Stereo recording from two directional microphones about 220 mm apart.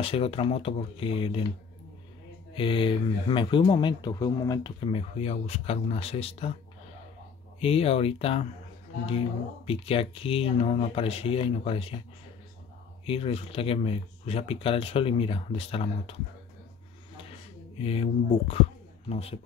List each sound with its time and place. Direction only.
0.0 s speech: 25° left (ahead or behind)
2.5 s speech: 25° left (ahead or behind)
7.6 s speech: 25° left (ahead or behind)
9.7 s speech: 25° left (ahead or behind)
13.0 s speech: 25° left (ahead or behind)
17.7 s speech: 25° left (ahead or behind)